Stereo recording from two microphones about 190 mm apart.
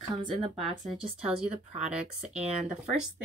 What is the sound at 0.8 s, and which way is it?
Speech, 5° right (ahead or behind).